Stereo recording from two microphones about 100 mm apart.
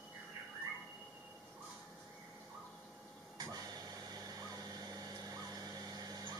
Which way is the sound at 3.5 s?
40° right (ahead or behind).